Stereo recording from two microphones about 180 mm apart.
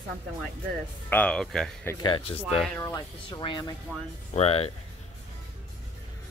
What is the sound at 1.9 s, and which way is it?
Speech, 25° left (ahead or behind).